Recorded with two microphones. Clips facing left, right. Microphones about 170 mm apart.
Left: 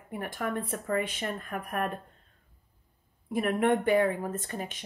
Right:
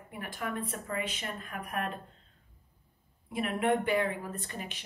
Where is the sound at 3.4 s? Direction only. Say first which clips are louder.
Left 3 dB; 45° left (ahead or behind).